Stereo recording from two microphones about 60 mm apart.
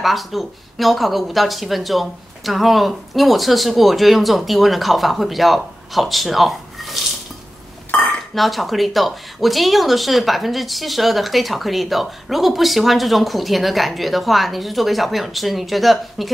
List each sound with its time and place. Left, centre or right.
0.0 s speech: centre
8.4 s speech: centre